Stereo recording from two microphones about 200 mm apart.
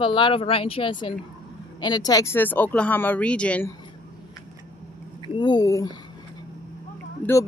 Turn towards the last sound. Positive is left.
turn(degrees=10)  # may be behind; listen again after turning